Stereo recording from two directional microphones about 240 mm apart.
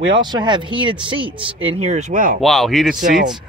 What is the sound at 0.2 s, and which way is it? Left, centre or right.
Speech, centre.